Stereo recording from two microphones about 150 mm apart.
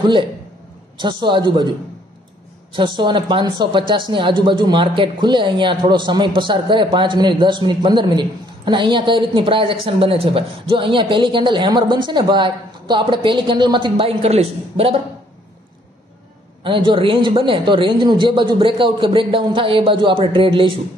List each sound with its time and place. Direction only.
0.9 s speech: 30° right (ahead or behind)
2.7 s speech: 30° right (ahead or behind)
16.6 s speech: 35° right (ahead or behind)